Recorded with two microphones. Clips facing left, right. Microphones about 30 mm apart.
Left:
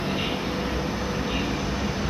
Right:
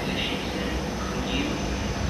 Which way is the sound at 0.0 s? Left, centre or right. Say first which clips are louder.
Left 1 dB; centre.